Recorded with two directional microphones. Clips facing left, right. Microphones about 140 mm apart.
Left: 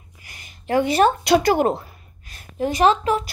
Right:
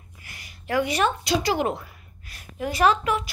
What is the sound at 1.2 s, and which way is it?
Speech, 55° left (ahead or behind).